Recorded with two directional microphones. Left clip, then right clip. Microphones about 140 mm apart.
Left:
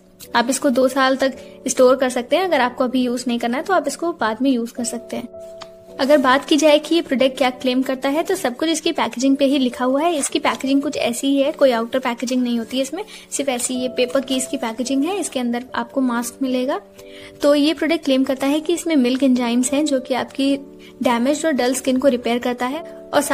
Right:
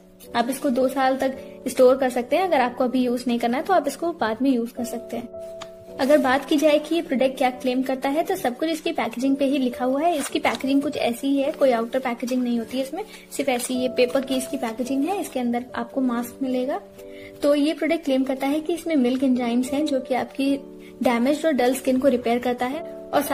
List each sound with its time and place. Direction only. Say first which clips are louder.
0.3 s a woman's voice: left 5 dB; 40° left (ahead or behind)
13.4 s a woman's voice: left 1 dB; 20° left (ahead or behind)